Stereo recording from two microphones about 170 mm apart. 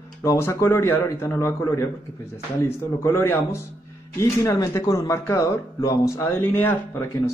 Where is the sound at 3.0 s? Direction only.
15° left (ahead or behind).